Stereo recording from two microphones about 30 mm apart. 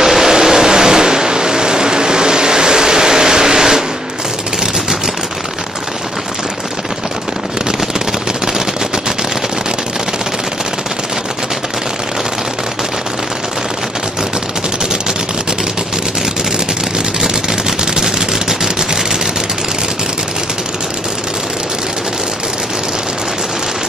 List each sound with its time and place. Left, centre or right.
0.0 s vehicle: centre
17.2 s machine gun: centre